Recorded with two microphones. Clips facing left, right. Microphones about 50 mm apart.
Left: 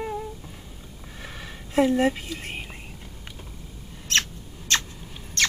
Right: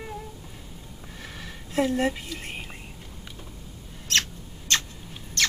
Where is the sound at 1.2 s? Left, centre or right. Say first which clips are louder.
Left 2 dB; centre.